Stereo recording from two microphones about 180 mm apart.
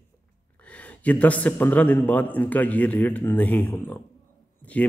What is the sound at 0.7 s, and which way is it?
A man's voice, 10° left (ahead or behind).